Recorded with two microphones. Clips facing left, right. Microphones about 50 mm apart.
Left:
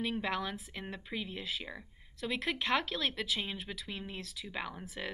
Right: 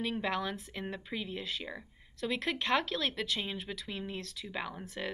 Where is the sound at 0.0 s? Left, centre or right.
Centre.